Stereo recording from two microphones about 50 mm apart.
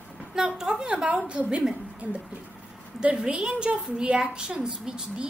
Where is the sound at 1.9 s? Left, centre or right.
Right.